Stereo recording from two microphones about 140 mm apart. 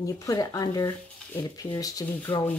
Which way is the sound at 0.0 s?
25° left (ahead or behind).